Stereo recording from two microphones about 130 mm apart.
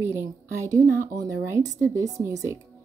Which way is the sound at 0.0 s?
20° right (ahead or behind).